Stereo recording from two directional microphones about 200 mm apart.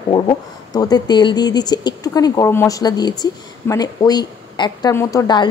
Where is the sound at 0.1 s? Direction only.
20° left (ahead or behind).